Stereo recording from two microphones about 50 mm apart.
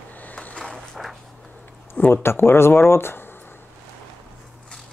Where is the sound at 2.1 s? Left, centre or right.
Left.